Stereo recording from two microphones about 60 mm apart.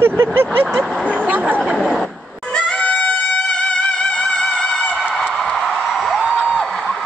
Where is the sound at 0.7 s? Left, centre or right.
Centre.